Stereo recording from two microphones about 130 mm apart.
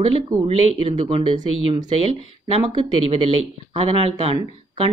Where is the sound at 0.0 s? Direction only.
50° right (ahead or behind).